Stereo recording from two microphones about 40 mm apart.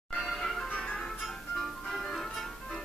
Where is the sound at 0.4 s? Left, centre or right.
Centre.